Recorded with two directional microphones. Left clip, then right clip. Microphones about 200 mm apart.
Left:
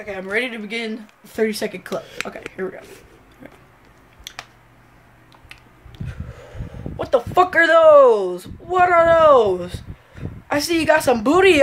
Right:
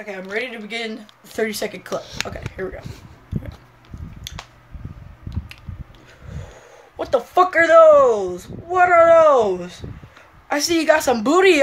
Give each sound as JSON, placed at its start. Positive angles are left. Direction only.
{"t": 0.3, "sound": "speech", "side_deg": 50}
{"t": 0.7, "sound": "speech", "side_deg": 10}
{"t": 1.3, "sound": "speech", "side_deg": 0}
{"t": 7.0, "sound": "speech", "side_deg": 0}
{"t": 9.1, "sound": "speech", "side_deg": 10}
{"t": 10.5, "sound": "speech", "side_deg": 0}